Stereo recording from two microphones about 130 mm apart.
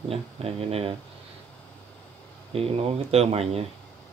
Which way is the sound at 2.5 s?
50° right (ahead or behind).